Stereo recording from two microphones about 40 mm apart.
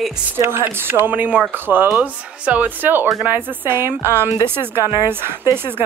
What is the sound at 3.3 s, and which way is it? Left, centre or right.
A woman's voice, right.